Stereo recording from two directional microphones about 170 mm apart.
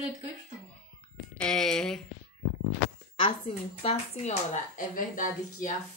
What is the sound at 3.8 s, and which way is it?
Speech, 40° left (ahead or behind).